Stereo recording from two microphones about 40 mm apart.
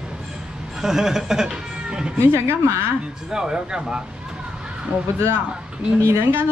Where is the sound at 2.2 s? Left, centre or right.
Right.